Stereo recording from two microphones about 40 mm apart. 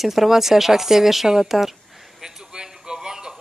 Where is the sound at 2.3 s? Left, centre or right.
Centre.